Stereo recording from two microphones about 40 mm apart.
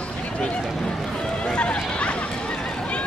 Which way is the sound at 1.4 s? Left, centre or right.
Left.